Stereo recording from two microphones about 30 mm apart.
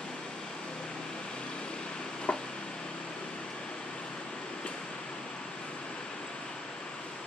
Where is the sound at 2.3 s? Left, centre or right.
Left.